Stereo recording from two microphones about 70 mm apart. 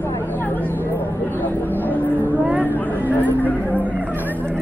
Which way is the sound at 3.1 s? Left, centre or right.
Left.